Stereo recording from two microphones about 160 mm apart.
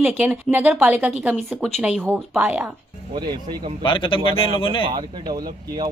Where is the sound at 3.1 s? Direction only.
30° right (ahead or behind).